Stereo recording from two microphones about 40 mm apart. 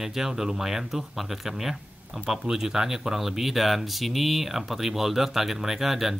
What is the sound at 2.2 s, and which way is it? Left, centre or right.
A man's voice, centre.